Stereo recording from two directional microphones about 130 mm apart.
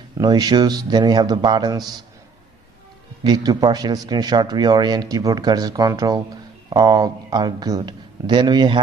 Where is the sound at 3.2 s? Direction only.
30° right (ahead or behind).